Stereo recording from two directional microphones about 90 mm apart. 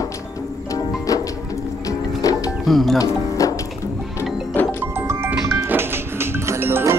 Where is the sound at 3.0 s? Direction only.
35° left (ahead or behind).